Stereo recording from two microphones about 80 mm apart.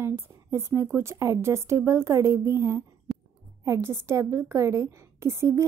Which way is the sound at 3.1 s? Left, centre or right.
Centre.